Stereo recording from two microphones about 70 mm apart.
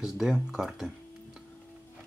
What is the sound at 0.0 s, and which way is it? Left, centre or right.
Speech, centre.